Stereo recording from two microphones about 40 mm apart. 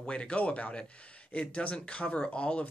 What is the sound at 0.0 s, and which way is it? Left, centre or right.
Speech, left.